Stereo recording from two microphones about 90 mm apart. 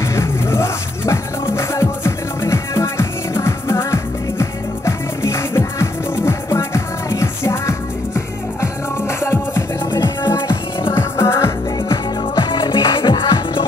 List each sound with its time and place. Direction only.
0.0 s music: 30° left (ahead or behind)
12.4 s music: 55° left (ahead or behind)